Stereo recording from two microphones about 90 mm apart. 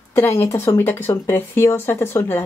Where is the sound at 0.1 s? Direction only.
30° left (ahead or behind).